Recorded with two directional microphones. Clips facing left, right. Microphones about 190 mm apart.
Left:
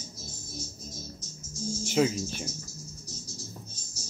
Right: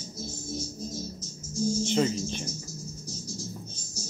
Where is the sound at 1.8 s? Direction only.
5° left (ahead or behind).